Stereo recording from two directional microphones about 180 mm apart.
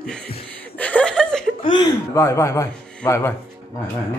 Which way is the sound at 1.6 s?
25° left (ahead or behind).